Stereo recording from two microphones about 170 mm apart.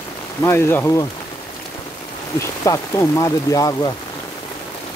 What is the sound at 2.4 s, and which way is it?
Speech, 20° left (ahead or behind).